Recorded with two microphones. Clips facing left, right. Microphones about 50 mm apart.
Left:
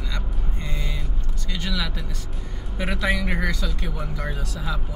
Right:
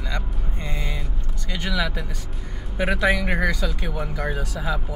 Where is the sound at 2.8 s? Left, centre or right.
Centre.